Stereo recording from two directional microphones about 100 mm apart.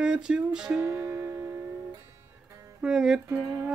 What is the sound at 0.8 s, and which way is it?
Music, 25° right (ahead or behind).